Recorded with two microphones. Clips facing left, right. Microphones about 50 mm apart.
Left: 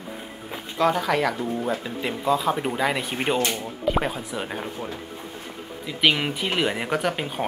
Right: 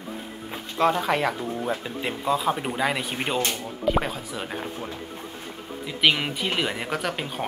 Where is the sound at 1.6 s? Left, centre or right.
Centre.